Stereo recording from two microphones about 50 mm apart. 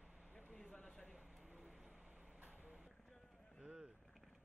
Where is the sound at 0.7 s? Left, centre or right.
Centre.